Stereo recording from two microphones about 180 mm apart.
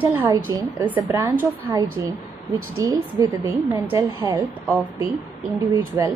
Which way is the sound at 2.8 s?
15° right (ahead or behind).